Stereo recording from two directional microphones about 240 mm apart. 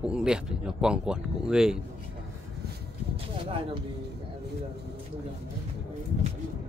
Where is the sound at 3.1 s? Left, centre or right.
Right.